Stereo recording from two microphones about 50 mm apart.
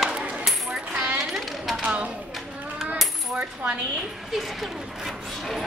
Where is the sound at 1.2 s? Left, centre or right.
Centre.